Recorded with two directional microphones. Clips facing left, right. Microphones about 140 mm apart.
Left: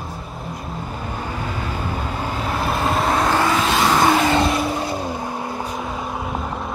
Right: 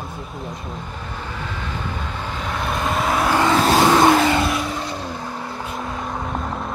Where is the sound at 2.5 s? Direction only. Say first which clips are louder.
Left 2 dB; 5° left (ahead or behind).